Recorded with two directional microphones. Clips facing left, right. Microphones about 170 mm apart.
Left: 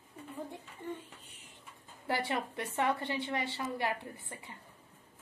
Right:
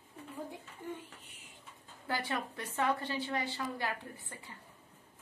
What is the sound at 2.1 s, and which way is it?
A woman's voice, 25° left (ahead or behind).